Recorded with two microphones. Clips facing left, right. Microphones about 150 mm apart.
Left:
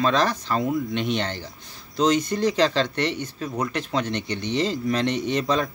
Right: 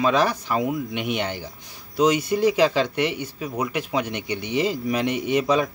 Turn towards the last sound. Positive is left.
turn(degrees=-10)  # may be behind; listen again after turning